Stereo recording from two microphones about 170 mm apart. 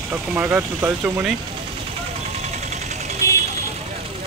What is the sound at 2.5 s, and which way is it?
Vehicle, 40° right (ahead or behind).